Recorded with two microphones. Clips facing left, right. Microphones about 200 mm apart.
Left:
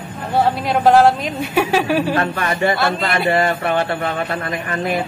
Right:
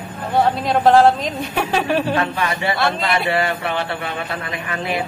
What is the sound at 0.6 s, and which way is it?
A woman's voice, 5° left (ahead or behind).